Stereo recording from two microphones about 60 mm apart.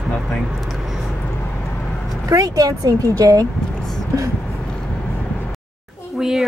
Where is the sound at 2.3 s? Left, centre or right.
Right.